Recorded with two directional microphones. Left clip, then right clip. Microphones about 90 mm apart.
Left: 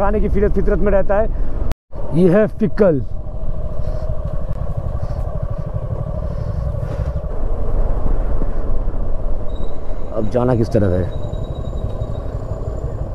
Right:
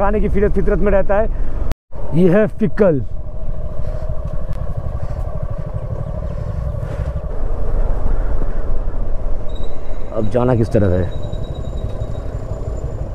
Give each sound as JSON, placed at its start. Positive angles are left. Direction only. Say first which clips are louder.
{"t": 0.0, "sound": "speech", "louder": "right 1 dB", "side_deg": -30}
{"t": 10.1, "sound": "speech", "louder": "right 1 dB", "side_deg": -25}